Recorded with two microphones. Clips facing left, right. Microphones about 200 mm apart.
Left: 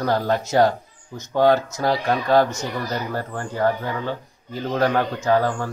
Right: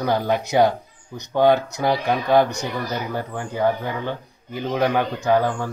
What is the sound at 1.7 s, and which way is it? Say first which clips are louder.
Speech: even; centre (ahead or behind).